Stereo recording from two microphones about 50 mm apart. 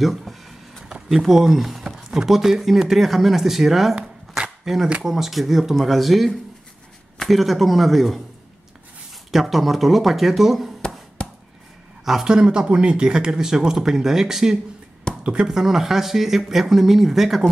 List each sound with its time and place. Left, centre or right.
0.0 s a sound: centre
1.0 s speech: centre
3.9 s shuffling cards: centre
5.0 s speech: centre
9.3 s speech: centre
11.2 s chop: left
12.0 s speech: centre